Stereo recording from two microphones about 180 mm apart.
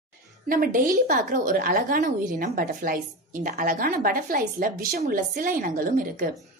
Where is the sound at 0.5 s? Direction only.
50° right (ahead or behind).